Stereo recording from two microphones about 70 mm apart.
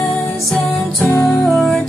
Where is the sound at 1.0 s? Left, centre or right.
Left.